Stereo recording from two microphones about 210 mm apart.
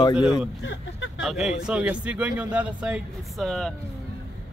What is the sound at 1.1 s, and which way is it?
Speech, centre (ahead or behind).